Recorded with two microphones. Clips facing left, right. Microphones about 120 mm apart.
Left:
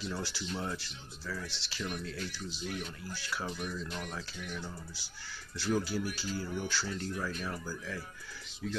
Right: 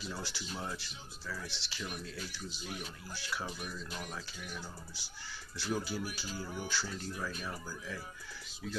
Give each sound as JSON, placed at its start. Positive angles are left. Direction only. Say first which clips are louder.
{"t": 0.0, "sound": "speech", "louder": "left 4 dB", "side_deg": -5}
{"t": 5.7, "sound": "speech", "louder": "left 4 dB", "side_deg": -5}